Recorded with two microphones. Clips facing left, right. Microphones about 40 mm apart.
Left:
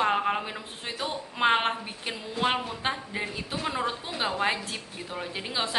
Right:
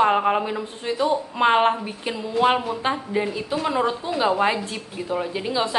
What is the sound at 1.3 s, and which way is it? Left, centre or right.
A woman's voice, centre.